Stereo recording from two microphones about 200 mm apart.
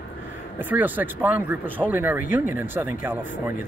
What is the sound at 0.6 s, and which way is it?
A man's voice, 10° right (ahead or behind).